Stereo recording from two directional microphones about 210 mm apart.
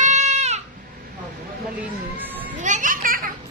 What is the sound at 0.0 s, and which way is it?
Goat, 35° right (ahead or behind).